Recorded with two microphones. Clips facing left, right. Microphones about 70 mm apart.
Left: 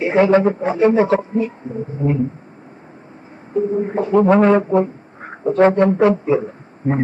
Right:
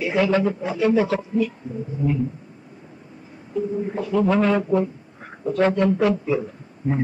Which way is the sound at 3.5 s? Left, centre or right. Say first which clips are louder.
Left 6 dB; left.